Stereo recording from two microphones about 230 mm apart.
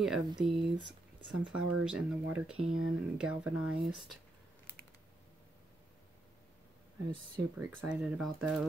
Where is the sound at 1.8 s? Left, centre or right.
Centre.